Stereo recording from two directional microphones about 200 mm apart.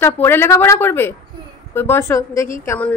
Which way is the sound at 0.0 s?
10° left (ahead or behind).